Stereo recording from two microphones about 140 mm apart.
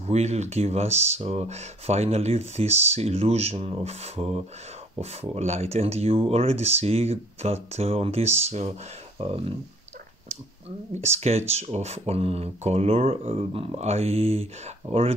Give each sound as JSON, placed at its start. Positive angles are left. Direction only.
{"t": 0.0, "sound": "speech", "side_deg": -50}
{"t": 11.0, "sound": "speech", "side_deg": -50}